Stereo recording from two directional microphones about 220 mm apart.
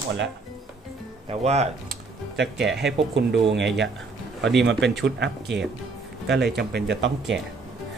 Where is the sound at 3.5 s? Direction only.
55° right (ahead or behind).